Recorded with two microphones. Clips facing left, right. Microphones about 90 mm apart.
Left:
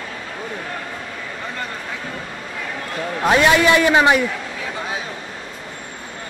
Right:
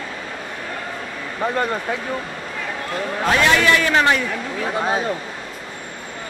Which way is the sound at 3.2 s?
15° left (ahead or behind).